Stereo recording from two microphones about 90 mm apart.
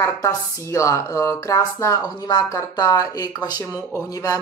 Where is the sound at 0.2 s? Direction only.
35° left (ahead or behind).